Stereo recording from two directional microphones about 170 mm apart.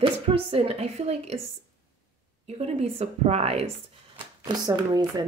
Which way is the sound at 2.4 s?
40° right (ahead or behind).